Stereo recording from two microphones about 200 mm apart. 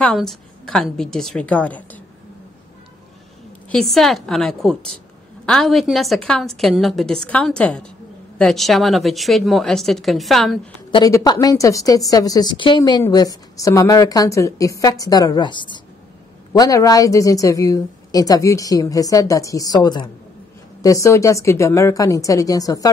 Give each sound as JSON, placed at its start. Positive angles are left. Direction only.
{"t": 0.0, "sound": "a woman's voice", "side_deg": 5}
{"t": 3.7, "sound": "a woman's voice", "side_deg": 0}
{"t": 10.9, "sound": "a woman's voice", "side_deg": 20}